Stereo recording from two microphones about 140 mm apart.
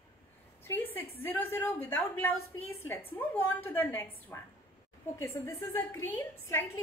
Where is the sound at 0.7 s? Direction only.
15° left (ahead or behind).